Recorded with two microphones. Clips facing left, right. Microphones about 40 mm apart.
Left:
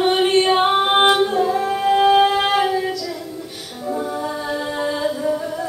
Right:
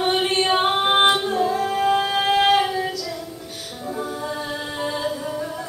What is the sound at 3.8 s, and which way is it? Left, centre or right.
Humming, centre.